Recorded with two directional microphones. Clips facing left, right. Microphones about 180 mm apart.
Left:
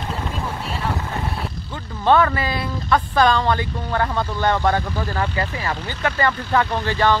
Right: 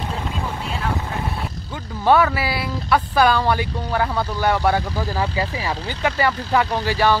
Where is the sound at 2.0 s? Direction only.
10° right (ahead or behind).